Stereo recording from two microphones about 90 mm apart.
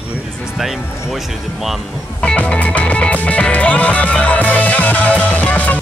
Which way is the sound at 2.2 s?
10° left (ahead or behind).